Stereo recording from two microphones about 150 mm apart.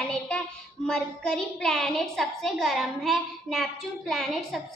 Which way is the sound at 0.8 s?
5° left (ahead or behind).